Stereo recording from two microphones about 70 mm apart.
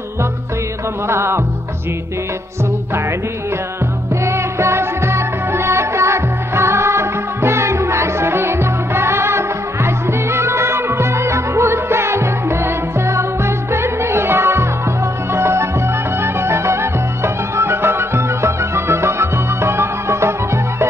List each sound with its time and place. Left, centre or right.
1.0 s music: right
4.1 s music of bollywood: right